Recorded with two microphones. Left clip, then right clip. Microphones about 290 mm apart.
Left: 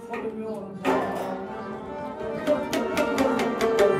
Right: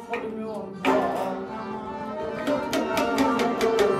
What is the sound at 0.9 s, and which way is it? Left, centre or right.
Music, centre.